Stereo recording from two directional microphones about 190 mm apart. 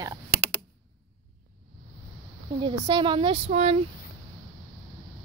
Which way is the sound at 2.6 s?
25° right (ahead or behind).